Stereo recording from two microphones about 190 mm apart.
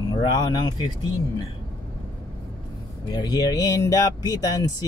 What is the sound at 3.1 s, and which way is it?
Speech, 20° left (ahead or behind).